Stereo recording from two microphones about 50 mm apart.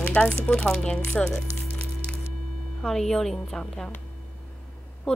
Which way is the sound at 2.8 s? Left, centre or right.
Centre.